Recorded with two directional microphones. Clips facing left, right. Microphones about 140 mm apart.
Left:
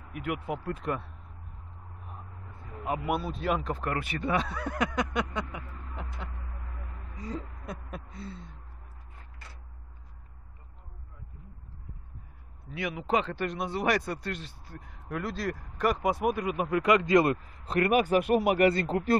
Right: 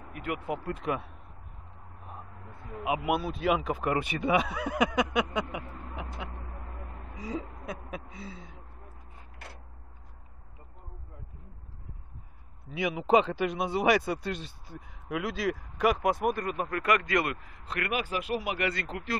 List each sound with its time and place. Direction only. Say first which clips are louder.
0.1 s speech: even; 5° left (ahead or behind)
2.8 s speech: right 2 dB; 5° right (ahead or behind)
7.2 s a sound: right 2 dB; 5° right (ahead or behind)
9.4 s mechanisms: right 6 dB; 65° right (ahead or behind)
12.7 s speech: right 5 dB; 15° right (ahead or behind)
15.1 s speech: right 2 dB; 5° right (ahead or behind); by 18.7 s 50° left (ahead or behind)
18.7 s speech: left 8 dB; 35° left (ahead or behind)